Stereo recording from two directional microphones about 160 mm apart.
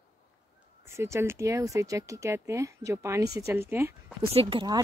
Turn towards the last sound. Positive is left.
turn(degrees=-30)  # may be behind; listen again after turning